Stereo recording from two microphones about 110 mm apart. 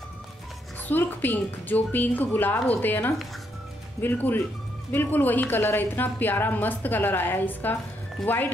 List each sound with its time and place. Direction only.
0.8 s a woman's voice: 15° left (ahead or behind)
8.2 s speech: 5° left (ahead or behind)